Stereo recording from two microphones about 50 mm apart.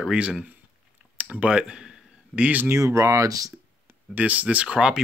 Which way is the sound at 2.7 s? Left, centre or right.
Right.